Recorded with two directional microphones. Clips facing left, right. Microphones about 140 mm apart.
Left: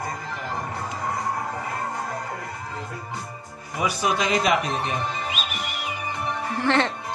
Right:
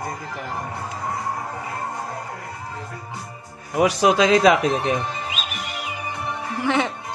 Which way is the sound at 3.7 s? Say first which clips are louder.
Right 7 dB; 85° right.